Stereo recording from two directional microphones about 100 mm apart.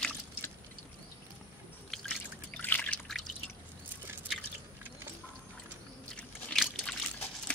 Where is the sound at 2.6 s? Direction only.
15° left (ahead or behind).